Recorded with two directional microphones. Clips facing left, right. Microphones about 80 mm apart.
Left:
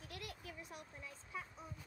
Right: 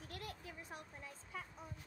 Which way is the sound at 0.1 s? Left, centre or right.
Right.